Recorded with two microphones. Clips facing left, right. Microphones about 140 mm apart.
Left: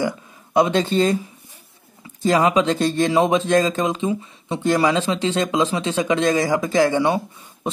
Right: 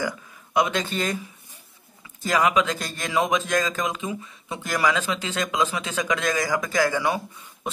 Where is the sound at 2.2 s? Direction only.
30° left (ahead or behind).